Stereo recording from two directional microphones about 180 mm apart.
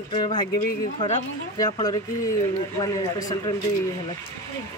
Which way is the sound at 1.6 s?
20° left (ahead or behind).